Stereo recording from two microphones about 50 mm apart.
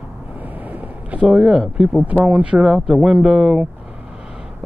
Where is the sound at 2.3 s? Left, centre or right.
Right.